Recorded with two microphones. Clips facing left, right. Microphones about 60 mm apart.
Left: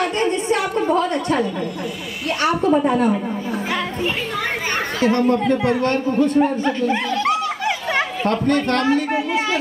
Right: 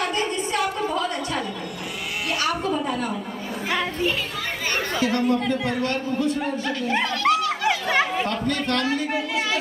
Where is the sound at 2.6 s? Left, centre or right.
Left.